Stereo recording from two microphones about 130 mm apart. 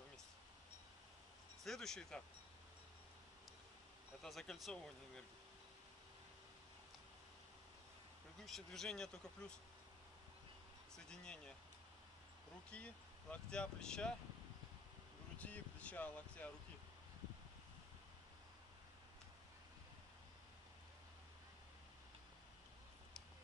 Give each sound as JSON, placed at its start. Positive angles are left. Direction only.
{"t": 1.6, "sound": "speech", "side_deg": 5}
{"t": 4.2, "sound": "speech", "side_deg": 0}
{"t": 8.4, "sound": "speech", "side_deg": 5}
{"t": 11.0, "sound": "speech", "side_deg": 5}
{"t": 12.6, "sound": "speech", "side_deg": 10}
{"t": 15.3, "sound": "speech", "side_deg": 10}